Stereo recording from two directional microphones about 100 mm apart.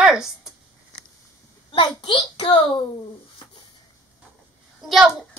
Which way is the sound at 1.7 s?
60° left (ahead or behind).